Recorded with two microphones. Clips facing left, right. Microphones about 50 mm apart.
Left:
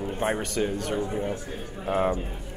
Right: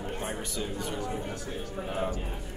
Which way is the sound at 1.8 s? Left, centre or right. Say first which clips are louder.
Left 9 dB; left.